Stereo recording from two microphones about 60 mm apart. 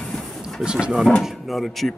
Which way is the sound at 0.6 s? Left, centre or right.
Centre.